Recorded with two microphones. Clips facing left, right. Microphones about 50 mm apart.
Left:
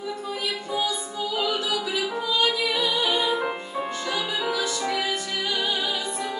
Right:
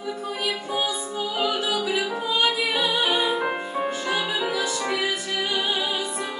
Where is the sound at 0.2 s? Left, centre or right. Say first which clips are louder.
Right 2 dB; right; by 6.2 s centre.